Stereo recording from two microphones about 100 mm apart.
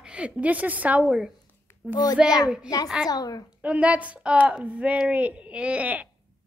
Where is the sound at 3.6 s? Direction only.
10° right (ahead or behind).